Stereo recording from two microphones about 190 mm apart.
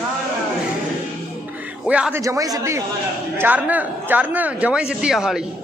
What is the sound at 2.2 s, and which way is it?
Speech, 15° right (ahead or behind).